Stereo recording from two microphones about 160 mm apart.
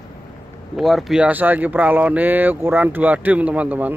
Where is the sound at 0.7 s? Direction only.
Centre (ahead or behind).